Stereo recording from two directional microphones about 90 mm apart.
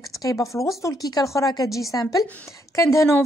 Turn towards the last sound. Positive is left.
turn(degrees=30)  # may be behind; listen again after turning